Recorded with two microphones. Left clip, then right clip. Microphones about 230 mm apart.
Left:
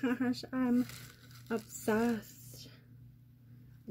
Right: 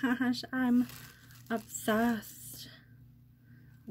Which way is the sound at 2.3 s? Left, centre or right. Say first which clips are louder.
Right 4 dB; right.